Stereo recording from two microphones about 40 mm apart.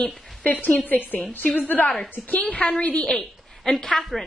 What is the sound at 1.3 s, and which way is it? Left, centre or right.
A woman's voice, left.